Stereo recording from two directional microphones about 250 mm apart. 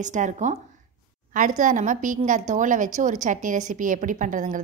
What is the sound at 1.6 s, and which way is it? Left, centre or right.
A woman's voice, right.